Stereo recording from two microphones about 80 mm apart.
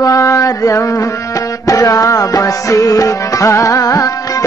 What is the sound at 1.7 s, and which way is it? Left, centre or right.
Music, left.